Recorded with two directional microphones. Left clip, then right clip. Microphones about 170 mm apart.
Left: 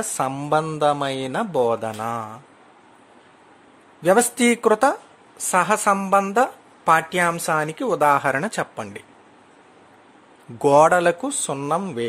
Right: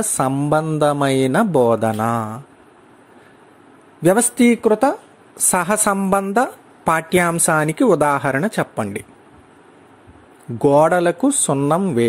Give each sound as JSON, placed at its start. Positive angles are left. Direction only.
{"t": 0.2, "sound": "a woman's voice", "side_deg": -15}
{"t": 4.0, "sound": "a man's voice", "side_deg": -20}
{"t": 4.4, "sound": "a woman's voice", "side_deg": 0}
{"t": 5.4, "sound": "a woman's voice", "side_deg": -25}
{"t": 10.6, "sound": "speech", "side_deg": -5}